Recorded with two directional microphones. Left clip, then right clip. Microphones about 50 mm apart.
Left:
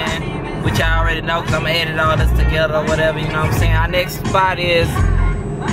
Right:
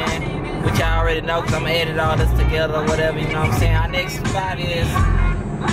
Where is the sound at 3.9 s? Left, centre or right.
Left.